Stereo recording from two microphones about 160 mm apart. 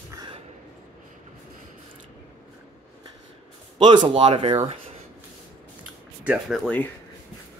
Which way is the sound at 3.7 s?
30° right (ahead or behind).